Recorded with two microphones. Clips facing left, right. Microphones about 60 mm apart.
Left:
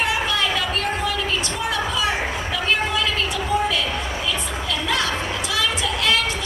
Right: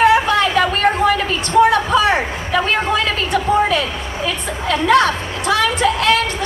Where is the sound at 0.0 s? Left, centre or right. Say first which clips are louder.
Right 9 dB; right.